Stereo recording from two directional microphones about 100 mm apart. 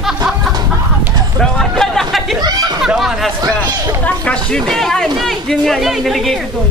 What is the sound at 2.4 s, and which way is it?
Chatter, 45° right (ahead or behind).